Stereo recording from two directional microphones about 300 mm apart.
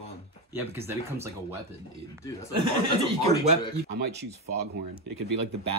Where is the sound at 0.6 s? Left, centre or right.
Centre.